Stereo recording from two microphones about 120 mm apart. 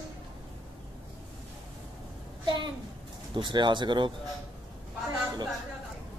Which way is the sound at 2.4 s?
40° right (ahead or behind).